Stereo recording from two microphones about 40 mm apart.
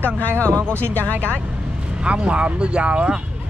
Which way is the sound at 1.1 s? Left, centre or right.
Right.